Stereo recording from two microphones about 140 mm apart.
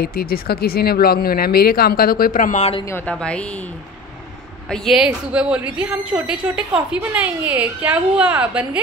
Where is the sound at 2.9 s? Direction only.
10° left (ahead or behind).